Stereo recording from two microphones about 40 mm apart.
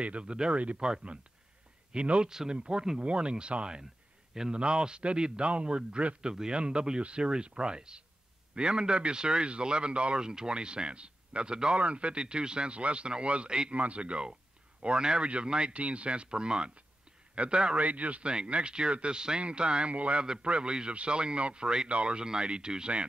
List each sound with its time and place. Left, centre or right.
0.0 s a man's voice: right
17.7 s a man's voice: right